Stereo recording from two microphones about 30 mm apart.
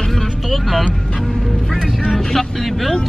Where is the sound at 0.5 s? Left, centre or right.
Centre.